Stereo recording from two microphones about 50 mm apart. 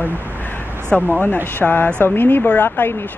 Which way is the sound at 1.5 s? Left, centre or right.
Left.